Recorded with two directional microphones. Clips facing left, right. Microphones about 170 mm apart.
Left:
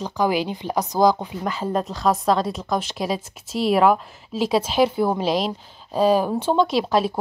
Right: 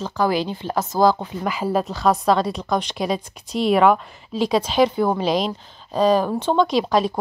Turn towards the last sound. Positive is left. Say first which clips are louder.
# right 1 dB
turn(degrees=5)  # may be behind; listen again after turning